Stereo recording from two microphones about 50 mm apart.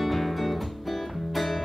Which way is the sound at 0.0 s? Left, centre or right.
Centre.